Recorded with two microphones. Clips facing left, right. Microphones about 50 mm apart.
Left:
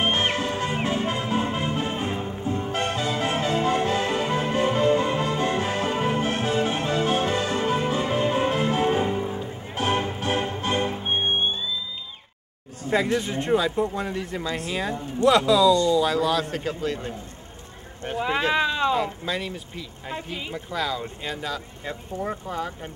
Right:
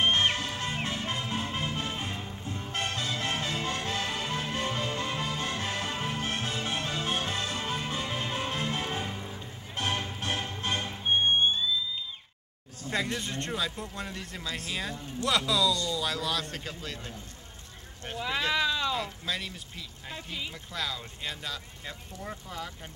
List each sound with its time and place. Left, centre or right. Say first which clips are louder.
0.0 s music: left 3 dB; centre
11.1 s music: right 4 dB; centre
12.9 s speech: left 9 dB; centre
18.0 s speech: left 9 dB; centre
18.5 s speech: left 5 dB; left
19.2 s speech: left 6 dB; centre
20.2 s speech: left 6 dB; left
20.7 s speech: left 9 dB; centre
22.1 s speech: left 12 dB; left